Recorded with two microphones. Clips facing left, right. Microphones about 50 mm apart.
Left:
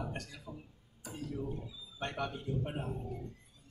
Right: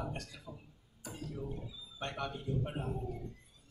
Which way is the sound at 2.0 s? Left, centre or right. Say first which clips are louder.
Left 2 dB; centre.